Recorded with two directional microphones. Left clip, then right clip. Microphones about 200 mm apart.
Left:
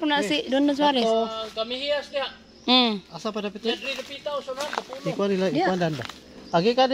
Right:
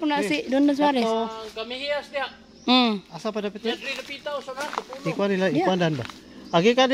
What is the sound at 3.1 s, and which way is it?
Speech, 30° right (ahead or behind).